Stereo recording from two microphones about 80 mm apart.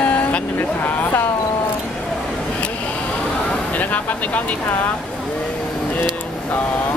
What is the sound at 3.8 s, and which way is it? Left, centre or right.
Speech, centre.